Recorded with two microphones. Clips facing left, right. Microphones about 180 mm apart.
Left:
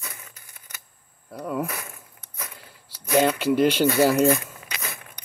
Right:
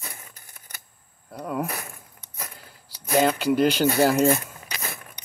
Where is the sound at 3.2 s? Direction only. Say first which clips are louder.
Left 1 dB; 5° left (ahead or behind).